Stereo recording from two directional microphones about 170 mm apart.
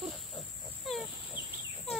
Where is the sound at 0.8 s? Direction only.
Centre (ahead or behind).